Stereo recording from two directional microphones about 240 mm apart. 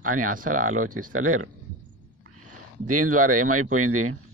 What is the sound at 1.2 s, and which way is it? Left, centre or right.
Speech, right.